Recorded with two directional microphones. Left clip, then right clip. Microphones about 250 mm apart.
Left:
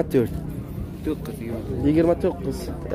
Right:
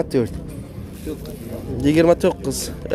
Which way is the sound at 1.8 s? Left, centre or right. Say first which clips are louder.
Right 5 dB; centre.